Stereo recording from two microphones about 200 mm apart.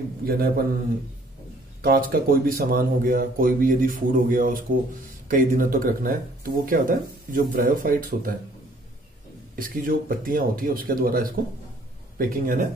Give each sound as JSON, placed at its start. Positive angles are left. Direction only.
{"t": 0.2, "sound": "a man's voice", "side_deg": -50}
{"t": 1.8, "sound": "speech", "side_deg": -50}
{"t": 9.6, "sound": "speech", "side_deg": -45}